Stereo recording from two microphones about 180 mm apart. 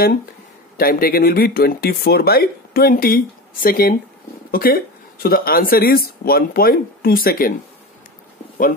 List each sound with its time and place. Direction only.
0.7 s speech: 55° left (ahead or behind)